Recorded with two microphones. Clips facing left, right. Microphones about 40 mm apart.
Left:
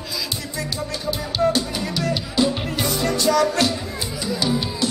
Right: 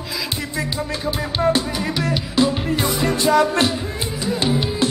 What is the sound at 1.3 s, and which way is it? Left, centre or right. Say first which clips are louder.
Music: right 1 dB; right.